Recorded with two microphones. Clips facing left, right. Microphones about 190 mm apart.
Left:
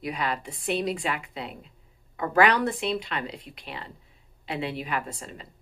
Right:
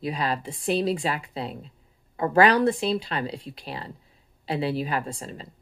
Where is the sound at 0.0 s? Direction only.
30° right (ahead or behind).